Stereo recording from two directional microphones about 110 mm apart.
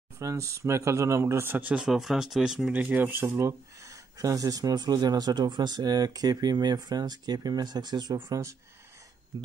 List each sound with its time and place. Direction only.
0.2 s speech: 30° right (ahead or behind)
9.3 s speech: 45° right (ahead or behind)